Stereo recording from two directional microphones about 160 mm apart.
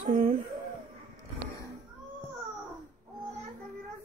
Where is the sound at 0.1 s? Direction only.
55° right (ahead or behind).